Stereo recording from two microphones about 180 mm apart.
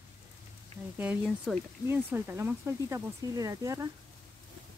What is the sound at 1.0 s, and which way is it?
Speech, 5° right (ahead or behind).